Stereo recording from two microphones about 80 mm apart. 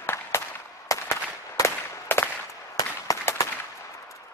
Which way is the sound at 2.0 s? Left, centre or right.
Left.